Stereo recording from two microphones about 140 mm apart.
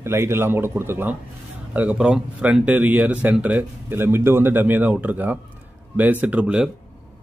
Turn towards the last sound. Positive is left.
turn(degrees=-5)  # may be behind; listen again after turning